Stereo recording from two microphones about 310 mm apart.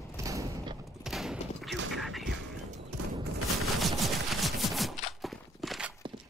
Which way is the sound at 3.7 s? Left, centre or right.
Centre.